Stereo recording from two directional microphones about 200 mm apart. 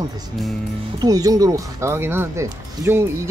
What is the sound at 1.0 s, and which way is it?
Speech, 20° right (ahead or behind).